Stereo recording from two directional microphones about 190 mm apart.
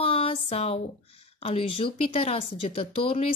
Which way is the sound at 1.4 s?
30° left (ahead or behind).